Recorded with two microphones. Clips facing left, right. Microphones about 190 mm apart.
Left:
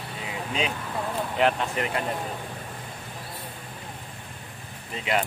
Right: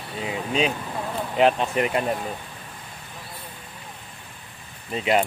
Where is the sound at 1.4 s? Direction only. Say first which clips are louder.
Right 5 dB; 20° right (ahead or behind).